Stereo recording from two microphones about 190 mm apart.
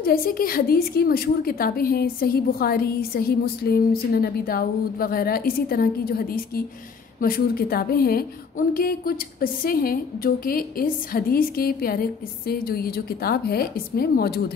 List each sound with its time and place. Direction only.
0.0 s a woman's voice: 50° left (ahead or behind)